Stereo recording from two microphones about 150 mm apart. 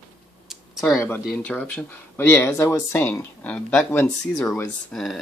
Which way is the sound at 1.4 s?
10° left (ahead or behind).